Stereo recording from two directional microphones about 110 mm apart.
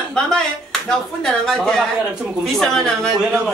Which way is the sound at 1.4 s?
5° left (ahead or behind).